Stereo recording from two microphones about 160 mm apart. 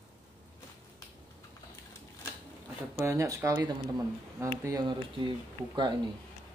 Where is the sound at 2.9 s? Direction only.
15° right (ahead or behind).